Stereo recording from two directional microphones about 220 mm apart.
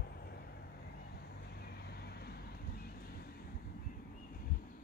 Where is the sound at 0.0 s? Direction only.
45° left (ahead or behind).